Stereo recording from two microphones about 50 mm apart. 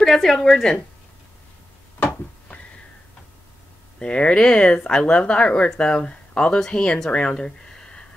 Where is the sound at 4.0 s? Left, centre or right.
Left.